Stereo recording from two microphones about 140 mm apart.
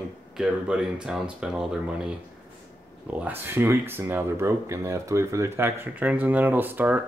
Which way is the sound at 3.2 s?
15° right (ahead or behind).